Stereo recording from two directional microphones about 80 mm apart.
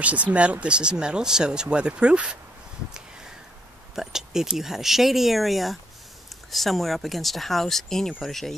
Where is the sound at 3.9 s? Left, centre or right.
Centre.